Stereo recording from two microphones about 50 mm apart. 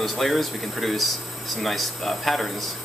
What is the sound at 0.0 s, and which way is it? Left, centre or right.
Speech, centre.